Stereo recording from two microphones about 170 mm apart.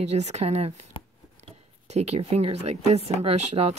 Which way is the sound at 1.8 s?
40° right (ahead or behind).